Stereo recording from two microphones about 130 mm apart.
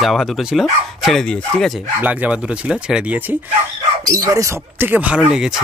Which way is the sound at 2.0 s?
10° right (ahead or behind).